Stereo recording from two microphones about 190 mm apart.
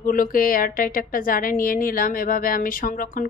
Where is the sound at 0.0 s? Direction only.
45° left (ahead or behind).